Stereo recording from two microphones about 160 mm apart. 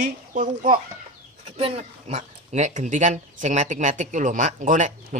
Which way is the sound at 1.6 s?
40° right (ahead or behind).